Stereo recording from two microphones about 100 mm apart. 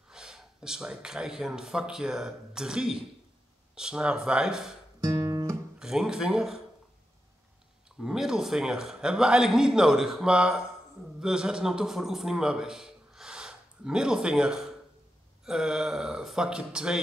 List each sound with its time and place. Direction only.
0.1 s speech: 5° right (ahead or behind)
5.0 s guitar: 35° right (ahead or behind)
5.8 s speech: 5° right (ahead or behind)
8.0 s a man's voice: 5° right (ahead or behind)